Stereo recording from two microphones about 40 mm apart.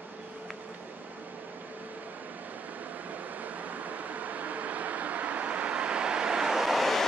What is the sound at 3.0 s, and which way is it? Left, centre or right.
Vehicle, right.